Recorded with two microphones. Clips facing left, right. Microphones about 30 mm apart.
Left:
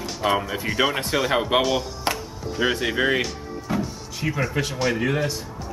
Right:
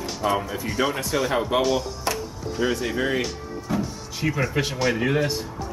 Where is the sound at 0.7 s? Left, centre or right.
Centre.